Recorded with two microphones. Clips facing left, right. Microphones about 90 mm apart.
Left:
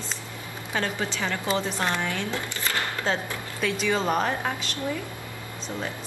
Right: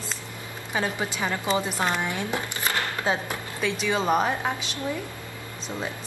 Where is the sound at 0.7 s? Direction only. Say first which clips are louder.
Right 1 dB; 15° right (ahead or behind).